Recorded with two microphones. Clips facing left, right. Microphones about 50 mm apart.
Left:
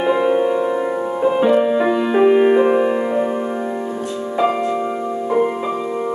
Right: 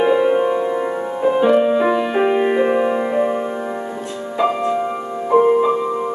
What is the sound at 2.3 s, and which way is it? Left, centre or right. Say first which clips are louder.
Music: left 3 dB; centre.